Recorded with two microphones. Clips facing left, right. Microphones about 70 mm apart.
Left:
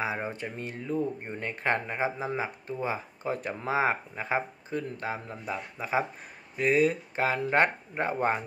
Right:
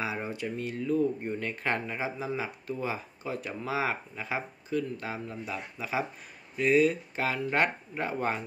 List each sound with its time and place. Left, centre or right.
0.0 s speech: left